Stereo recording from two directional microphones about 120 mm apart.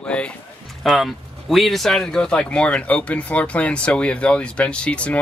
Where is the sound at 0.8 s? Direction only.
Centre (ahead or behind).